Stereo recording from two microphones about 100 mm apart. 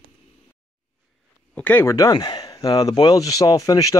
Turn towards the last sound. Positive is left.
turn(degrees=35)  # may be behind; listen again after turning